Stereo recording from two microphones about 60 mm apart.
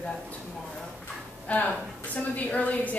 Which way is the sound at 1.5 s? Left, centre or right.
Left.